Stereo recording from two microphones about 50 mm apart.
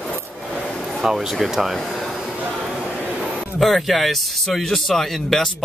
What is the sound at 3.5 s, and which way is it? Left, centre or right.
Speech, centre.